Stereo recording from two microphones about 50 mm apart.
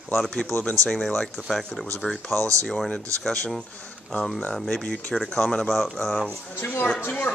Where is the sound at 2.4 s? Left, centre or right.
Right.